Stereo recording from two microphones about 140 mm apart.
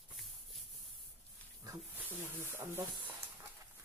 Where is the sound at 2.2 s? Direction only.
15° right (ahead or behind).